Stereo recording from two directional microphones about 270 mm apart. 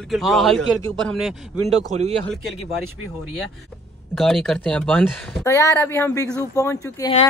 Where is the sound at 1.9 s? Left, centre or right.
Right.